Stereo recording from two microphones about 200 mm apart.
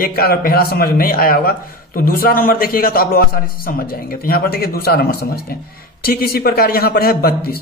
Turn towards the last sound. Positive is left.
turn(degrees=50)  # may be behind; listen again after turning